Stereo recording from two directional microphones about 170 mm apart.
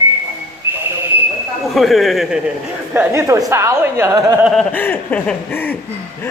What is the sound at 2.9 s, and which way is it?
A woman's voice, 15° right (ahead or behind).